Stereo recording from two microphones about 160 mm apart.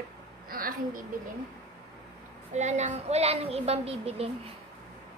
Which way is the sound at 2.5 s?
45° right (ahead or behind).